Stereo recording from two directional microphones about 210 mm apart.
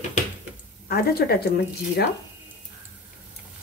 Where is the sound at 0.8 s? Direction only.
50° left (ahead or behind).